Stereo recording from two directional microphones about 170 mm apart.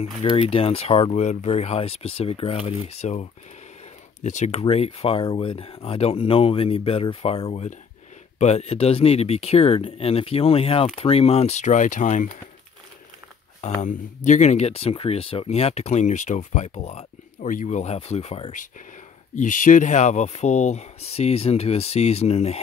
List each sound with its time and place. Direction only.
0.2 s speech: 35° left (ahead or behind)
13.7 s speech: 45° left (ahead or behind)
19.3 s speech: 50° left (ahead or behind)